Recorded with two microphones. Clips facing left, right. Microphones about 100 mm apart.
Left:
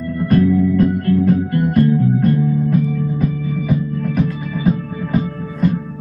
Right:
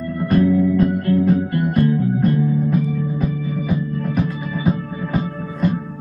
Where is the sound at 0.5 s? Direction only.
10° right (ahead or behind).